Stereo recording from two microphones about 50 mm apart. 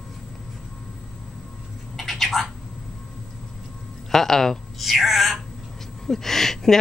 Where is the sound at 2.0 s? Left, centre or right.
Centre.